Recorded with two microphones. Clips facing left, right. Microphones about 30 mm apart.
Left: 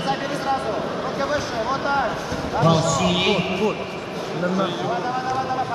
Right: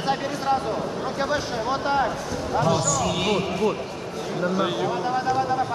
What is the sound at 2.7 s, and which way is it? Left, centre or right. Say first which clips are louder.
Speech: left 3 dB; left.